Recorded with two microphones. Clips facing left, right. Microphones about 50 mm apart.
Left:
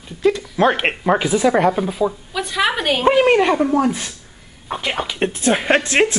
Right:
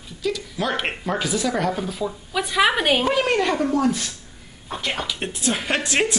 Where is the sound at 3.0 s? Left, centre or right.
Left.